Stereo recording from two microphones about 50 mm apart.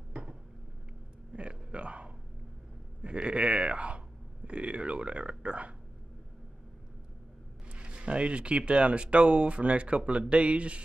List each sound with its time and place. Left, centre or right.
1.3 s a sound: right
3.0 s speech: right
7.7 s speech: right